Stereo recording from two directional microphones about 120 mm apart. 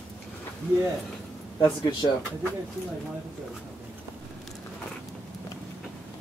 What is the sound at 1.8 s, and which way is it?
Speech, 40° left (ahead or behind).